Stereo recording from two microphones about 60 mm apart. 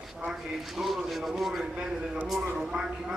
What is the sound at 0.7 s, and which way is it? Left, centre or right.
A man's voice, centre.